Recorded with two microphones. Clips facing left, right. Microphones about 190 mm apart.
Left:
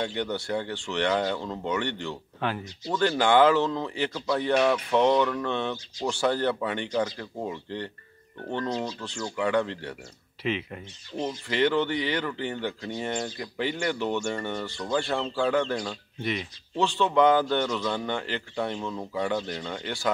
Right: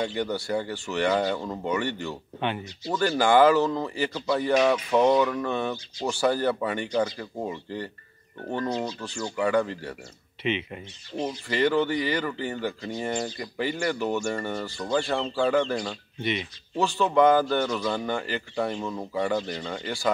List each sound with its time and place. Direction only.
0.0 s speech: 5° right (ahead or behind)